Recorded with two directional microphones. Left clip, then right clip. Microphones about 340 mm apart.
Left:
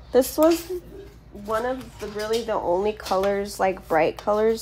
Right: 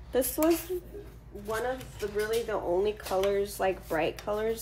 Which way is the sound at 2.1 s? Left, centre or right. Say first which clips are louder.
Left 5 dB; left.